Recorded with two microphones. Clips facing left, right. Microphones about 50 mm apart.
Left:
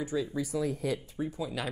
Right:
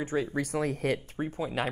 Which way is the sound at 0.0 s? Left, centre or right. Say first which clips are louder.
Right 2 dB; right.